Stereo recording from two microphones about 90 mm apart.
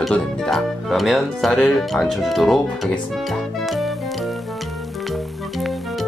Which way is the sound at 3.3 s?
Centre (ahead or behind).